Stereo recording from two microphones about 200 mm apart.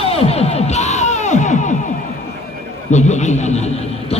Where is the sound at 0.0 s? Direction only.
30° left (ahead or behind).